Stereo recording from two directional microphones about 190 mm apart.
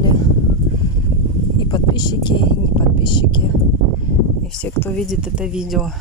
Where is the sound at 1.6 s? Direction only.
20° left (ahead or behind).